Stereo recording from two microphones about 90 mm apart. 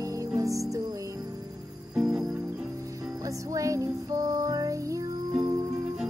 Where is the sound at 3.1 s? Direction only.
35° right (ahead or behind).